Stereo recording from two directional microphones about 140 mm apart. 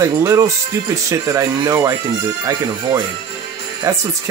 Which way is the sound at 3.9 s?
20° right (ahead or behind).